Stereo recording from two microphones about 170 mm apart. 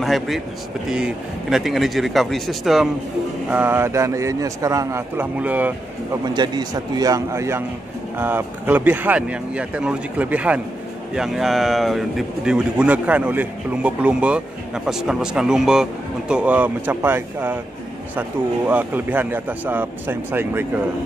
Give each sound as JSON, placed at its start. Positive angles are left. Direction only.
{"t": 0.0, "sound": "speech", "side_deg": 0}
{"t": 6.2, "sound": "speech", "side_deg": -25}
{"t": 18.7, "sound": "speech", "side_deg": -10}